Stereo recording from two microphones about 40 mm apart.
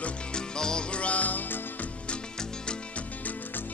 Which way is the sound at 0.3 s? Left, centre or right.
Centre.